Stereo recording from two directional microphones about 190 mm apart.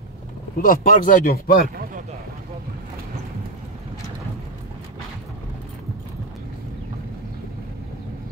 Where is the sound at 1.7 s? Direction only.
50° right (ahead or behind).